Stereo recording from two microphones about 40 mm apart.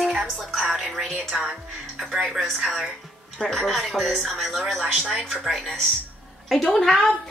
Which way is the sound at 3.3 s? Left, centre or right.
Centre.